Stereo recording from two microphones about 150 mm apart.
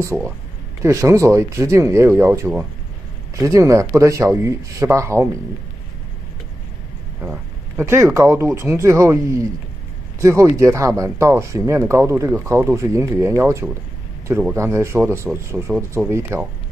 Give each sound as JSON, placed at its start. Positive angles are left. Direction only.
{"t": 0.8, "sound": "speech", "side_deg": -20}
{"t": 7.2, "sound": "speech", "side_deg": -15}